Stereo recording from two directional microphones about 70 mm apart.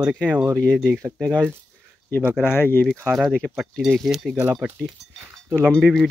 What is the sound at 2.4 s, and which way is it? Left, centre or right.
Speech, left.